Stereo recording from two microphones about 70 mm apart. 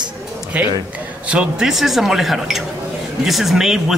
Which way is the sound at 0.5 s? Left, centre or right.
Right.